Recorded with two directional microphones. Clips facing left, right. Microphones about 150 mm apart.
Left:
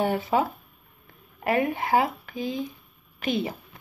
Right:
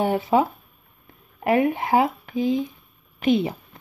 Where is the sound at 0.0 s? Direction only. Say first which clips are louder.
Right 4 dB; 15° right (ahead or behind).